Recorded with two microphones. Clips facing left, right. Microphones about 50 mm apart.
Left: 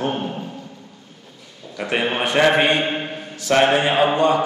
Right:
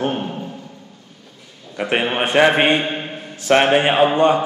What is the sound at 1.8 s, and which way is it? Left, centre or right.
A man's voice, right.